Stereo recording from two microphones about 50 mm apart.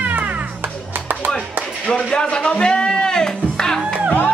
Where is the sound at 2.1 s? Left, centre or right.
Centre.